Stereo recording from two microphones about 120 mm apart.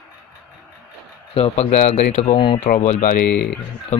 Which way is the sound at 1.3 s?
60° left (ahead or behind).